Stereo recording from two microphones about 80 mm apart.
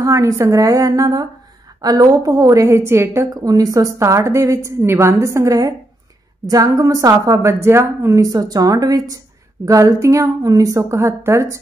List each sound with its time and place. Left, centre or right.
0.0 s a woman's voice: right
3.3 s a woman's voice: right
8.2 s a woman's voice: right